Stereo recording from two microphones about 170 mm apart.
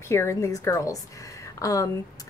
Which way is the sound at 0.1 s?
15° left (ahead or behind).